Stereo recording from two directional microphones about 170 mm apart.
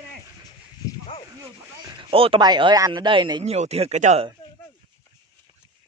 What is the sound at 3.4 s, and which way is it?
Speech, 40° right (ahead or behind).